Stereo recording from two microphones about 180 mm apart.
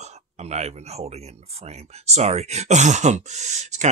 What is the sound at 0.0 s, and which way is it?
Speech, 40° right (ahead or behind).